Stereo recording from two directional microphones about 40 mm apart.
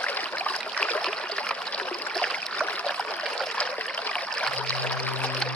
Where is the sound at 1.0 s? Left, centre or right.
Left.